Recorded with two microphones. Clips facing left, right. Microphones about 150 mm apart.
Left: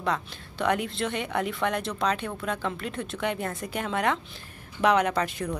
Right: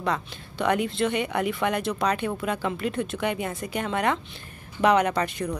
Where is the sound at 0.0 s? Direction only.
Centre (ahead or behind).